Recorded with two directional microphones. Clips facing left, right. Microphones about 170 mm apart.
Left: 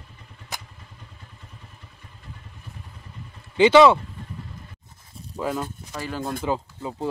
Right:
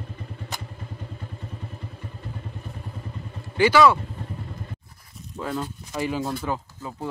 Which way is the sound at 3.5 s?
20° left (ahead or behind).